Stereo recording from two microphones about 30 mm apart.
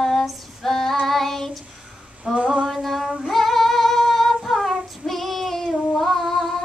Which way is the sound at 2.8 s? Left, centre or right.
Centre.